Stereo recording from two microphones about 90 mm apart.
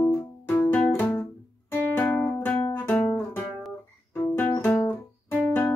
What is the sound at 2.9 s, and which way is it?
Music, 15° left (ahead or behind).